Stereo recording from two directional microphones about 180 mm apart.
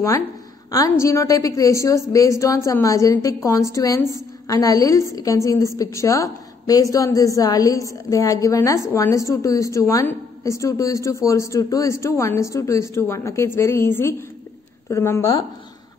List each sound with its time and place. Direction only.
0.7 s a woman's voice: 20° left (ahead or behind)